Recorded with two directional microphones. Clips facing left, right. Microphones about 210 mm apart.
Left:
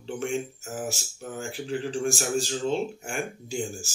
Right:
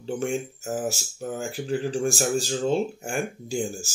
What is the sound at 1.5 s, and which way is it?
Speech, 40° right (ahead or behind).